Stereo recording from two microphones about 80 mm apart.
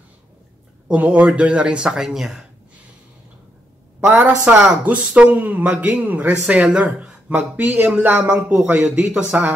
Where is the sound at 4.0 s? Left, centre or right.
Right.